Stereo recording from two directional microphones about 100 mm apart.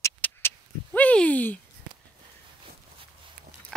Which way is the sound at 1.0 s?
15° left (ahead or behind).